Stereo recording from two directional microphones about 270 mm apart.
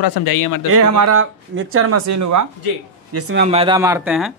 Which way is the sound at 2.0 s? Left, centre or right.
Right.